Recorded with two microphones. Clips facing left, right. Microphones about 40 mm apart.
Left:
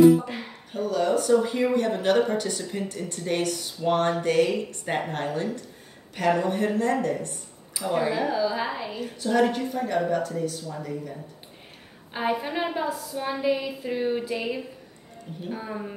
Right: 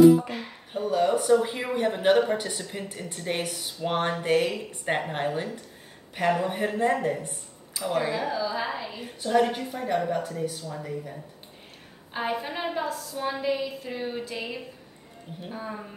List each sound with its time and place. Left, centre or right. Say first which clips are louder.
0.7 s speech: even; centre
7.7 s speech: left 2 dB; centre
8.9 s speech: right 1 dB; centre
12.1 s a woman's voice: left 3 dB; centre